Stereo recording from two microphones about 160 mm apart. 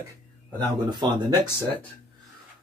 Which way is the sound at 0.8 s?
25° right (ahead or behind).